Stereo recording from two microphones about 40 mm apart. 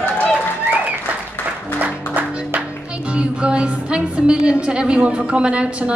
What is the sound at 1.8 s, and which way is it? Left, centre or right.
Music, right.